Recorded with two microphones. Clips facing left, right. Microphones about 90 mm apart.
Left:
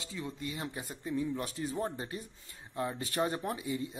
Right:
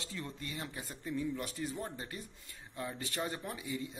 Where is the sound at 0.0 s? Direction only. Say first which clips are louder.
Left 4 dB; 10° left (ahead or behind).